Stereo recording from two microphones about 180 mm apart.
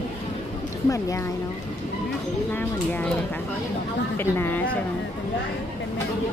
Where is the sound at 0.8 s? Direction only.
15° left (ahead or behind).